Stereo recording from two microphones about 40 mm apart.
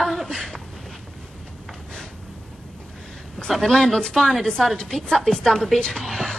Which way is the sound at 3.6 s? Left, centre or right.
Centre.